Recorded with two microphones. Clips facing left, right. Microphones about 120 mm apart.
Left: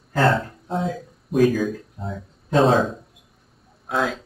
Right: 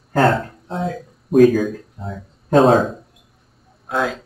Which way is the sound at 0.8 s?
45° right (ahead or behind).